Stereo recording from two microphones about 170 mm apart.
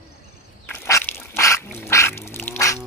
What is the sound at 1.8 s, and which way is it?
Duck, 15° left (ahead or behind).